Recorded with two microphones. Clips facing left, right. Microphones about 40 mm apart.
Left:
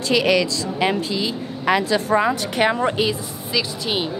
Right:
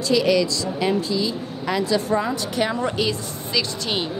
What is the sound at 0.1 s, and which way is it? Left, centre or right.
Speech, left.